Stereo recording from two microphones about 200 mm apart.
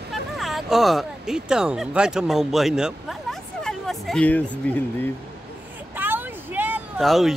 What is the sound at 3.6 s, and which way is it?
Hubbub, centre (ahead or behind).